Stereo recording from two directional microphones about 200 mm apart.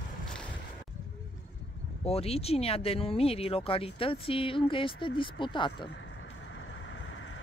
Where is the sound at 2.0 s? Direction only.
30° left (ahead or behind).